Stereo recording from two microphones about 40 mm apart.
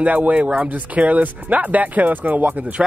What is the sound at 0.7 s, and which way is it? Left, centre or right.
Speech, right.